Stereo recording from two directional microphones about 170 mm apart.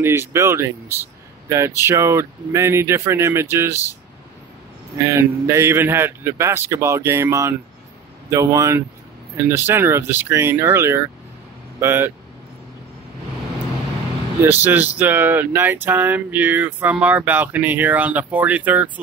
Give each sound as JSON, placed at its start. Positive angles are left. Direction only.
{"t": 0.0, "sound": "speech", "side_deg": -15}
{"t": 5.0, "sound": "speech", "side_deg": -15}
{"t": 14.4, "sound": "speech", "side_deg": -10}